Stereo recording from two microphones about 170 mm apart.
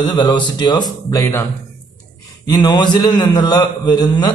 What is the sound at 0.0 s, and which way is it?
A man's voice, 25° left (ahead or behind).